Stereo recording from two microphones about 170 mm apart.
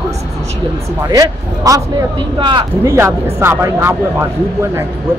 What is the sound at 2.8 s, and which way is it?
Speech, 15° right (ahead or behind).